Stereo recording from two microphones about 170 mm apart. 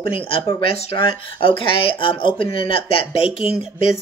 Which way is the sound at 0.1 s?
30° left (ahead or behind).